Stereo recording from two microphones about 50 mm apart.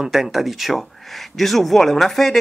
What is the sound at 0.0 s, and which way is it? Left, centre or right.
Speech, centre.